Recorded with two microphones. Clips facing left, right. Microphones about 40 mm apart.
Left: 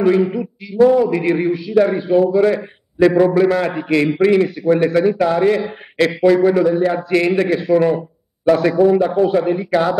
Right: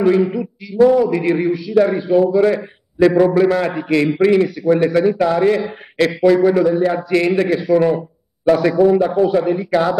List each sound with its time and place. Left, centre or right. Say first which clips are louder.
0.0 s a man's voice: even; centre
0.8 s a man's voice: even; left; by 5.7 s centre
5.9 s a man's voice: even; centre